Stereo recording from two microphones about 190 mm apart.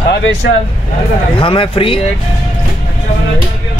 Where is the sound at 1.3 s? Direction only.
30° left (ahead or behind).